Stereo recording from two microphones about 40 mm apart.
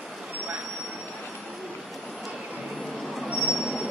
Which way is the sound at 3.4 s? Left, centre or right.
Centre.